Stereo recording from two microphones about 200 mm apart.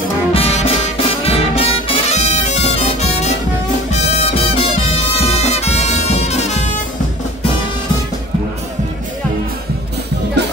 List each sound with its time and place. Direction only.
0.3 s music: 30° left (ahead or behind)